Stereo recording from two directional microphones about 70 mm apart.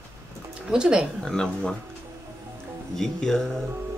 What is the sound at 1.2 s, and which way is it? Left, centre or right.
Speech, centre.